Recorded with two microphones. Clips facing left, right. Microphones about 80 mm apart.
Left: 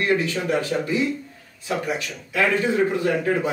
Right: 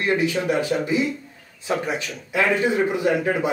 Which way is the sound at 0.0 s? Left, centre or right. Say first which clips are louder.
Right 1 dB; centre.